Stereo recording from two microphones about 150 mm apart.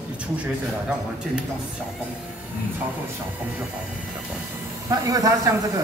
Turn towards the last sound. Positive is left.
turn(degrees=-25)  # may be behind; listen again after turning